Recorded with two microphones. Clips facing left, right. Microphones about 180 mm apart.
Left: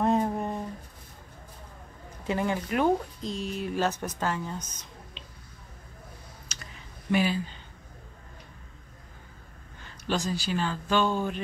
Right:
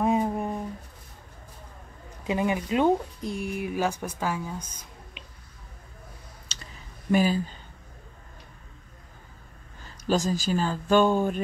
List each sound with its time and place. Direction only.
0.0 s a sound: 10° right (ahead or behind)
2.2 s speech: 15° right (ahead or behind)
6.5 s clicking: 30° right (ahead or behind)
7.1 s speech: 40° right (ahead or behind)
9.8 s speech: 40° right (ahead or behind)